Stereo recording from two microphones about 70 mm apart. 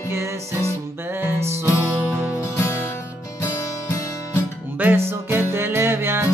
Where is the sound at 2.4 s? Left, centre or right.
Left.